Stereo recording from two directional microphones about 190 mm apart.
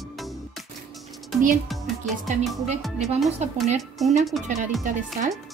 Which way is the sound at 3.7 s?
Centre (ahead or behind).